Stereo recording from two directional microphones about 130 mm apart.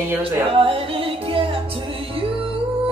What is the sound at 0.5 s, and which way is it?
Music, 45° right (ahead or behind).